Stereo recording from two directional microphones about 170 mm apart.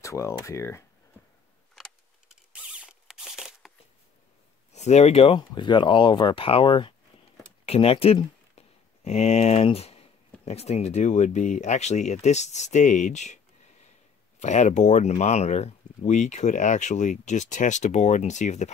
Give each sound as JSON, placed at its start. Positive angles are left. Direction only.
{"t": 0.0, "sound": "speech", "side_deg": 15}
{"t": 1.8, "sound": "a sound", "side_deg": -5}
{"t": 4.7, "sound": "speech", "side_deg": 40}
{"t": 14.4, "sound": "speech", "side_deg": 45}